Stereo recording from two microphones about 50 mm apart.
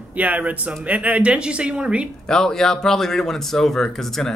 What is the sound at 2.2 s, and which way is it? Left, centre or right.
A man's voice, centre.